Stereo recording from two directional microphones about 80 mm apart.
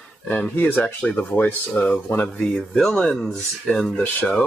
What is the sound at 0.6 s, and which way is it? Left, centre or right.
Speech, left.